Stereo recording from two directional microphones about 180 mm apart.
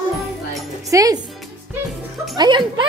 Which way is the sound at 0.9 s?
20° right (ahead or behind).